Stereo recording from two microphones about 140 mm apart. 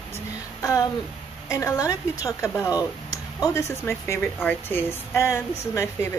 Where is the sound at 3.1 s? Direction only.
25° left (ahead or behind).